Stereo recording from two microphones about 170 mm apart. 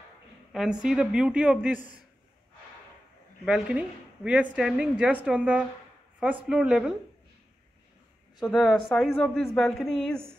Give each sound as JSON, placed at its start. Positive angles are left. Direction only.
{"t": 0.5, "sound": "a woman's voice", "side_deg": -5}
{"t": 3.4, "sound": "a woman's voice", "side_deg": -5}
{"t": 8.5, "sound": "a woman's voice", "side_deg": 0}